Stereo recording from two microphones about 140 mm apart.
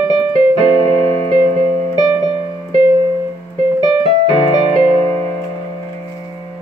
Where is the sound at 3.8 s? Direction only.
35° left (ahead or behind).